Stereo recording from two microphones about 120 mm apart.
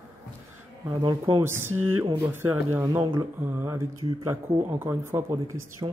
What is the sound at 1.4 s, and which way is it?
Speech, 20° right (ahead or behind).